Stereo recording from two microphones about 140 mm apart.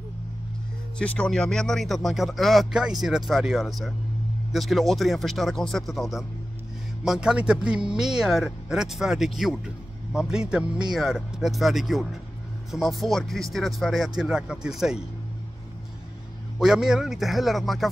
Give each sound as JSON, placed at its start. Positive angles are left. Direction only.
{"t": 0.9, "sound": "speech", "side_deg": 5}
{"t": 16.5, "sound": "speech", "side_deg": -5}